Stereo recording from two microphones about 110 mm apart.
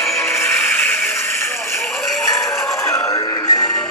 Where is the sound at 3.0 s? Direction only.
30° left (ahead or behind).